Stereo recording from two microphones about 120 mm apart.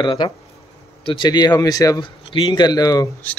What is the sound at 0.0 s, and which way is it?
Speech, 40° left (ahead or behind).